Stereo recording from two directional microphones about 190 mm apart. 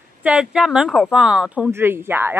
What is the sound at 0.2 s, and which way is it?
Speech, 5° right (ahead or behind).